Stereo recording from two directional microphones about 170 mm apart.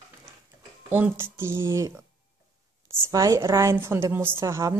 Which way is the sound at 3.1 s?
20° right (ahead or behind).